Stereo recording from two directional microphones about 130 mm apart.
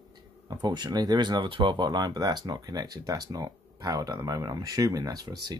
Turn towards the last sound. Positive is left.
turn(degrees=-30)  # may be behind; listen again after turning